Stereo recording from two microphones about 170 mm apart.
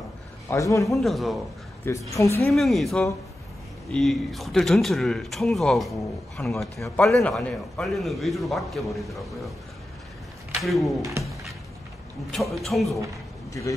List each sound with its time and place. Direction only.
0.5 s a man's voice: 20° left (ahead or behind)
0.8 s speech: centre (ahead or behind)
1.9 s a woman's voice: 20° left (ahead or behind)
2.4 s speech: centre (ahead or behind)
10.6 s speech: centre (ahead or behind)
11.0 s speech: 20° right (ahead or behind)
12.3 s speech: centre (ahead or behind)
13.5 s speech: 20° left (ahead or behind)